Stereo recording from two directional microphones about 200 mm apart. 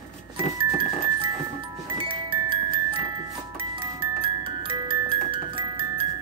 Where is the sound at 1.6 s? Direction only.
25° right (ahead or behind).